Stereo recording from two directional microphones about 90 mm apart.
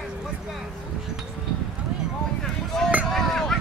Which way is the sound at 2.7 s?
5° left (ahead or behind).